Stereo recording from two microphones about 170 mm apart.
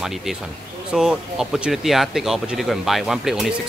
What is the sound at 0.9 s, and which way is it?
Speech, 5° right (ahead or behind).